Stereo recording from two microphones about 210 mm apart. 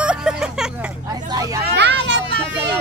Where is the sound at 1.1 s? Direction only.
20° right (ahead or behind).